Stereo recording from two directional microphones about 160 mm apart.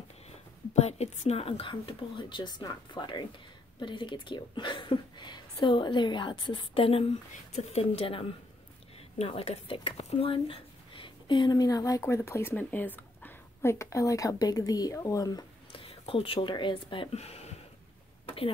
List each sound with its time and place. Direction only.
0.7 s a woman's voice: 40° left (ahead or behind); by 15.8 s 25° left (ahead or behind)
15.8 s speech: 35° left (ahead or behind)